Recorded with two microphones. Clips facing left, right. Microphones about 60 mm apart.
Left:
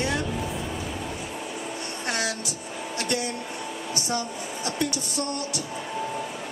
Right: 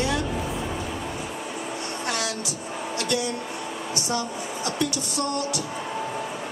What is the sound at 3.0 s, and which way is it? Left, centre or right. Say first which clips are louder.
Speech: right 2 dB; left.